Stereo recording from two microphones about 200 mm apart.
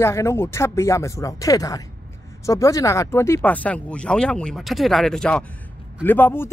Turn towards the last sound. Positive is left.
turn(degrees=10)  # may be behind; listen again after turning